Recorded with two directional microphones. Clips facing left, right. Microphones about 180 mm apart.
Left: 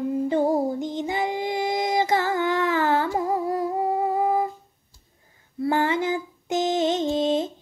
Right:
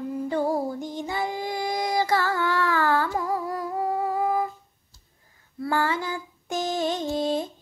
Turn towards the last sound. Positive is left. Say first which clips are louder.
# left 3 dB
turn(degrees=20)  # may be behind; listen again after turning